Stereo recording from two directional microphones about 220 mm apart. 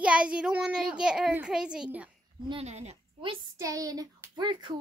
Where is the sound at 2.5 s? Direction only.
30° right (ahead or behind).